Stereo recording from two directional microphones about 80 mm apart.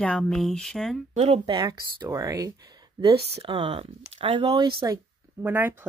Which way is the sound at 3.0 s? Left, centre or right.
Right.